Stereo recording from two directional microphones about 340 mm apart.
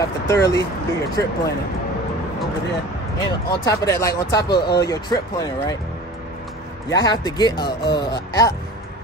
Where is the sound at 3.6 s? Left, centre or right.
Centre.